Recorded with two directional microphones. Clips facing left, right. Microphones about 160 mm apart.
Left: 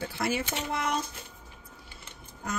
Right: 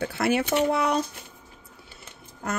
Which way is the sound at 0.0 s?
65° right (ahead or behind).